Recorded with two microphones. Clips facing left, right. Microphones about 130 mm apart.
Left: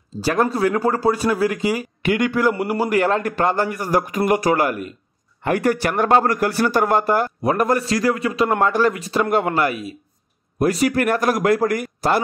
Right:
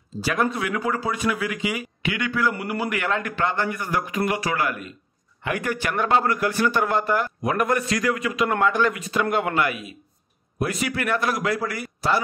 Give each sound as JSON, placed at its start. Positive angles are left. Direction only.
{"t": 0.2, "sound": "a man's voice", "side_deg": 35}